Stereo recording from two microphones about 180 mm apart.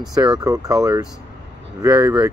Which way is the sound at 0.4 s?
20° right (ahead or behind).